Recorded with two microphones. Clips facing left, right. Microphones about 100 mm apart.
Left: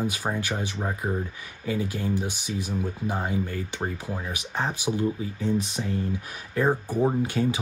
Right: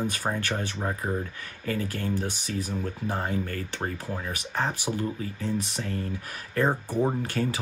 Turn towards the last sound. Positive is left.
turn(degrees=15)  # may be behind; listen again after turning